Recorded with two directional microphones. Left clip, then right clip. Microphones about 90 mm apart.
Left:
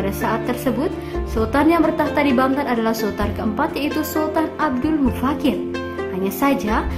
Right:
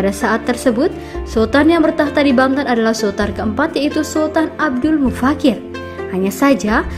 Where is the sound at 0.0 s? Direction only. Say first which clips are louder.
Right 5 dB; 50° right (ahead or behind).